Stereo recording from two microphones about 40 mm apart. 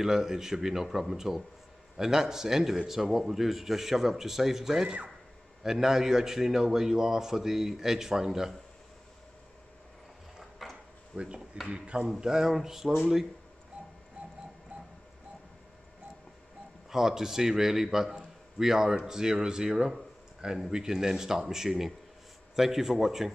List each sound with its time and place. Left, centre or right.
0.0 s a man's voice: centre
10.6 s a sound: centre
11.1 s speech: right
12.1 s a man's voice: centre
16.9 s a man's voice: centre